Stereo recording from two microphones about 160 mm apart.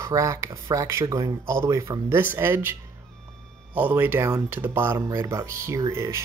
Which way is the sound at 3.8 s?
10° right (ahead or behind).